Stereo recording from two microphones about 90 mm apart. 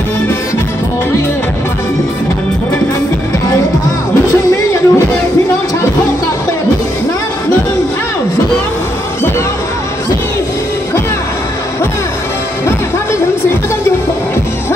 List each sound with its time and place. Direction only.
4.5 s music: 40° left (ahead or behind)